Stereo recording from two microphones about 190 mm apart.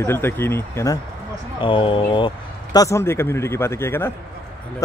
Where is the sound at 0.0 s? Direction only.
10° left (ahead or behind).